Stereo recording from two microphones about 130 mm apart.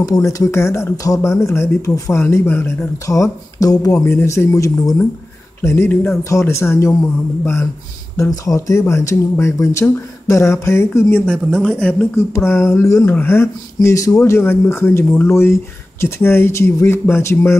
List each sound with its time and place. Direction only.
0.0 s speech: 25° left (ahead or behind)
8.2 s speech: 25° left (ahead or behind)
11.3 s speech: 5° left (ahead or behind)
12.3 s speech: 20° left (ahead or behind)